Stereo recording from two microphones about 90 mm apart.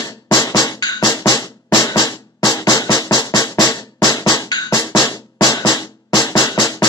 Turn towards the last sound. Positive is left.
turn(degrees=45)  # may be behind; listen again after turning